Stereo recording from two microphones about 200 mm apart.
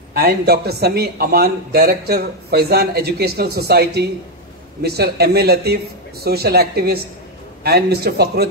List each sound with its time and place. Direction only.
0.1 s speech: 50° right (ahead or behind)